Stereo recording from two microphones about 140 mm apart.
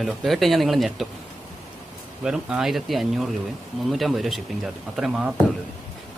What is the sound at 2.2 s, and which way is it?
Speech, 5° right (ahead or behind).